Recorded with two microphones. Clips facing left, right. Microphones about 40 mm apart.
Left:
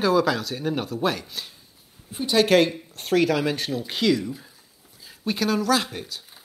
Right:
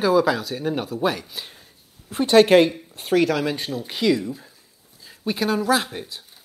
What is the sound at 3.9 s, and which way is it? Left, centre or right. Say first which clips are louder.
Speech: right 2 dB; centre.